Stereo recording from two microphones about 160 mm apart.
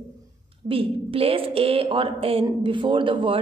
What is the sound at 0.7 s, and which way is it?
A woman's voice, 35° right (ahead or behind).